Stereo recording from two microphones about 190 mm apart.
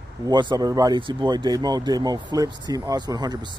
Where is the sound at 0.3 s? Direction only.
25° right (ahead or behind).